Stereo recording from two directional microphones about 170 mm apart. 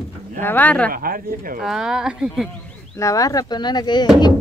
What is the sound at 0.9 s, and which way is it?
Speech, 60° right (ahead or behind).